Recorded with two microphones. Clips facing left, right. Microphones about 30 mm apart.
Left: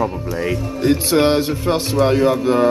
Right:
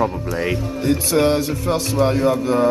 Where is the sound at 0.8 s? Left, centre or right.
Left.